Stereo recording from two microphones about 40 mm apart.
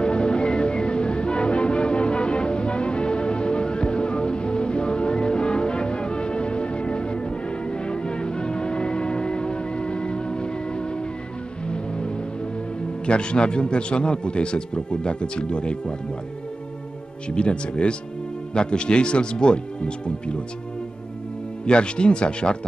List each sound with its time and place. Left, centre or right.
0.0 s music: left
13.0 s a man's voice: left
17.3 s a man's voice: left
21.6 s a man's voice: left